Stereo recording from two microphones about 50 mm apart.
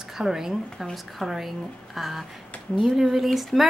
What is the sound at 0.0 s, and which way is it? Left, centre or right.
Speech, centre.